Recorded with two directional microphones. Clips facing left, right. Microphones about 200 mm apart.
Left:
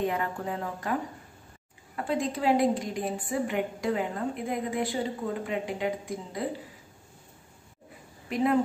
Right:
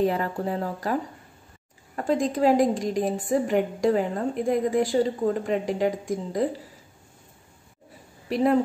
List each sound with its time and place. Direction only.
0.0 s speech: 35° right (ahead or behind)
2.0 s a woman's voice: 45° right (ahead or behind)